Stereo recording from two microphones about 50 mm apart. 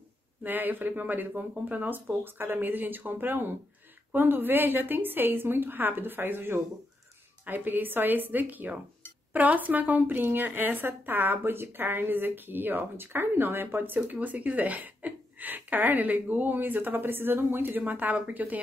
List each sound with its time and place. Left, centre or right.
0.4 s a woman's voice: right
13.9 s a woman's voice: right